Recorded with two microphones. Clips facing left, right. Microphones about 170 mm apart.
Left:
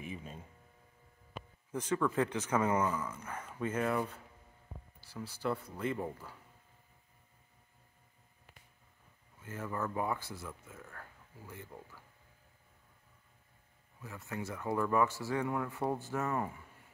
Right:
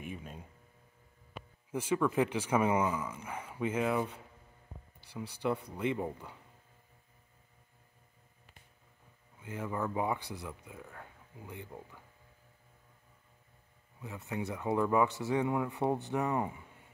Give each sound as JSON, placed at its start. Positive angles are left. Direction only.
{"t": 0.0, "sound": "a sound", "side_deg": -5}
{"t": 1.7, "sound": "speech", "side_deg": -10}
{"t": 5.4, "sound": "speech", "side_deg": -15}
{"t": 9.4, "sound": "speech", "side_deg": -15}
{"t": 14.0, "sound": "speech", "side_deg": -20}